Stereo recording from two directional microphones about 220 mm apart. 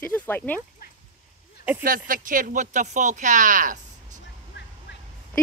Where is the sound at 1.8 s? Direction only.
40° right (ahead or behind).